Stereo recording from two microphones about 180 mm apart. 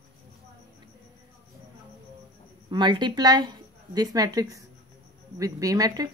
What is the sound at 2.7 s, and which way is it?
Speech, 25° right (ahead or behind).